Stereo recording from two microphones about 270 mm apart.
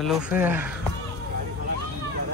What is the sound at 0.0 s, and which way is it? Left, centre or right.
Speech, centre.